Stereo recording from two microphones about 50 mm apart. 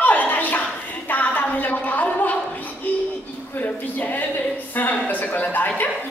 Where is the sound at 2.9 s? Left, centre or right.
Left.